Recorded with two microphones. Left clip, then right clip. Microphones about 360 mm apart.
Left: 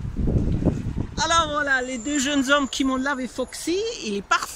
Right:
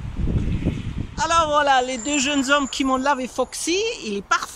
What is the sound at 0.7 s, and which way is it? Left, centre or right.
Sheep, left.